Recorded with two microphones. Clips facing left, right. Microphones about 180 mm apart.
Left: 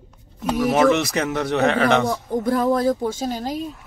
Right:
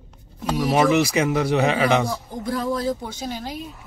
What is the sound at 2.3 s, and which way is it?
Speech, 55° left (ahead or behind).